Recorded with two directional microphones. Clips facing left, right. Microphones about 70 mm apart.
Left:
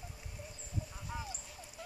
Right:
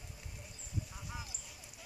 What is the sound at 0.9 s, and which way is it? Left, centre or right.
Dog, centre.